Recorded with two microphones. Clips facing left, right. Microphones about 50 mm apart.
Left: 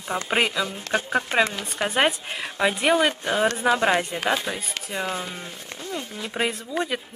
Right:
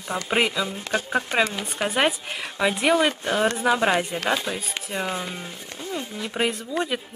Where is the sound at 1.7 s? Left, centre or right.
Centre.